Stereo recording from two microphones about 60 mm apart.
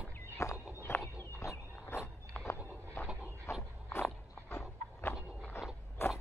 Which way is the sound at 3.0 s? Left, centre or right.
Left.